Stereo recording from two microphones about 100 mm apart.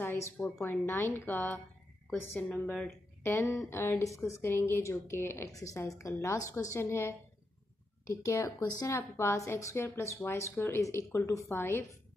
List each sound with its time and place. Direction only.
0.0 s speech: 20° left (ahead or behind)